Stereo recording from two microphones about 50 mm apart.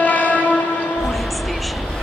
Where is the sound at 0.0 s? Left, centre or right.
Left.